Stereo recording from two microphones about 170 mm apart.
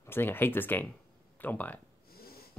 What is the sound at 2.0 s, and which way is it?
Snort, 65° left (ahead or behind).